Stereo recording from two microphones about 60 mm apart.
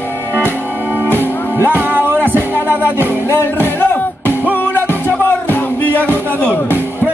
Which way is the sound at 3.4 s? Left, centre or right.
Left.